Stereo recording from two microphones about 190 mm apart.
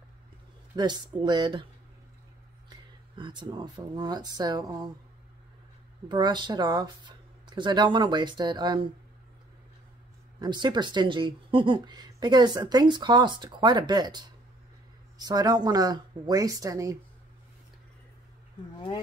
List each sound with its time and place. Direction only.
0.7 s speech: 20° right (ahead or behind)
3.2 s speech: 25° right (ahead or behind)
6.0 s speech: 25° right (ahead or behind)
10.4 s speech: 25° right (ahead or behind)